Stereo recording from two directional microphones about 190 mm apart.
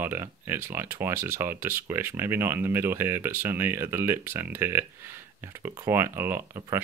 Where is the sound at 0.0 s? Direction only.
10° right (ahead or behind).